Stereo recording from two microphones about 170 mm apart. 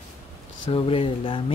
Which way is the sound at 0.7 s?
35° left (ahead or behind).